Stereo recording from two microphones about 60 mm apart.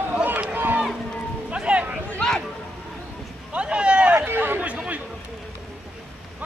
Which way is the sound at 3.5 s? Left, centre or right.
Centre.